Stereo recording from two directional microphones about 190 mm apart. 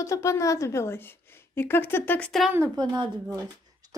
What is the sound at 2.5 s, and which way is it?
Speech, 20° right (ahead or behind).